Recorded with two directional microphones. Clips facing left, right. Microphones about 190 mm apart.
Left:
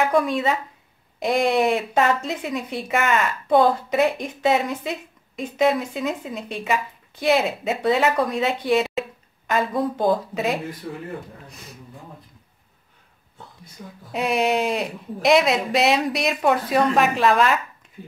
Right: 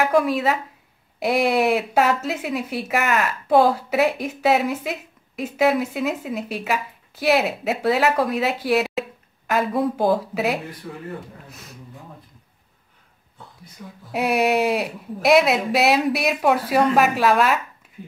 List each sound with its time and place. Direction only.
0.0 s speech: 5° right (ahead or behind)
13.8 s speech: 35° left (ahead or behind)
14.1 s speech: 5° right (ahead or behind)